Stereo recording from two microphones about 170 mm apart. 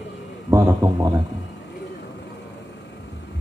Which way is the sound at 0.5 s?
20° right (ahead or behind).